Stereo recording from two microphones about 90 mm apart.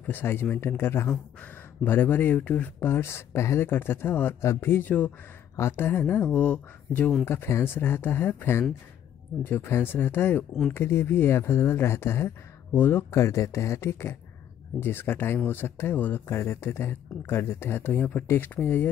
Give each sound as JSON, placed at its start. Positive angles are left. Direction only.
{"t": 0.0, "sound": "speech", "side_deg": 25}
{"t": 6.3, "sound": "speech", "side_deg": 15}
{"t": 7.2, "sound": "speech", "side_deg": 30}